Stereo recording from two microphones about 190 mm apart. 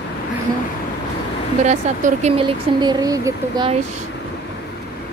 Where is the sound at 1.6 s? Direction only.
35° right (ahead or behind).